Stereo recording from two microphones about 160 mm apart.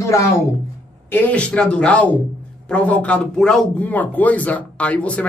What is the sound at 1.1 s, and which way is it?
A man's voice, 10° left (ahead or behind).